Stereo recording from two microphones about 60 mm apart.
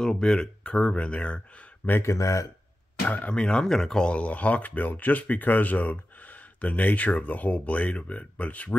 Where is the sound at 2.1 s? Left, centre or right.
Left.